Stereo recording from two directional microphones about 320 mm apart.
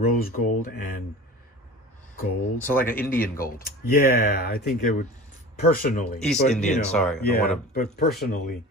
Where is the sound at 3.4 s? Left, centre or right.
Left.